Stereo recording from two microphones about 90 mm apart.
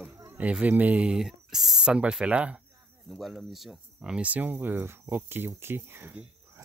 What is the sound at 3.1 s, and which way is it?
Speech, centre (ahead or behind).